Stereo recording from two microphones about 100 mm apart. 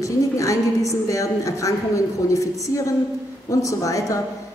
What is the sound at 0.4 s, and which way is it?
A woman's voice, 35° left (ahead or behind).